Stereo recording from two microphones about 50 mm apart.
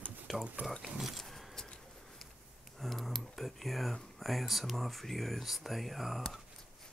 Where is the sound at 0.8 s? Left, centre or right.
Centre.